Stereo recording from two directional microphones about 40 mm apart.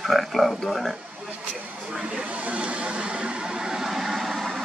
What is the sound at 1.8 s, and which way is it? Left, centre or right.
Speech, right.